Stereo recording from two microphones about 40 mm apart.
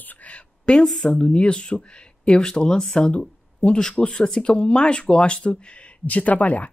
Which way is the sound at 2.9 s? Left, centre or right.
Left.